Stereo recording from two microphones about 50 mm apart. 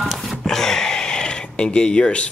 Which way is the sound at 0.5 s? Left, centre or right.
Centre.